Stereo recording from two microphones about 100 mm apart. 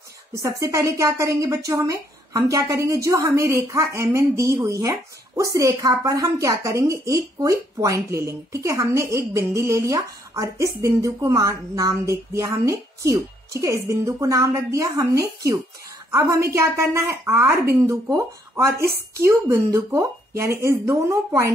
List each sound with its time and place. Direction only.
0.3 s speech: 30° right (ahead or behind)